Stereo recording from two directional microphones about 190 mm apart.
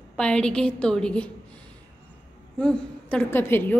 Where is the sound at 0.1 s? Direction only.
5° left (ahead or behind).